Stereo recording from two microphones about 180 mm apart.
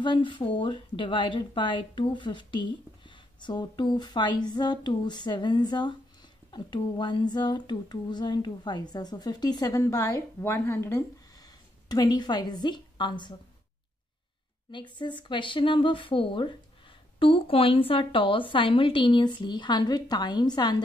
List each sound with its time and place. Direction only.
0.0 s speech: 25° left (ahead or behind)
14.7 s speech: 25° left (ahead or behind)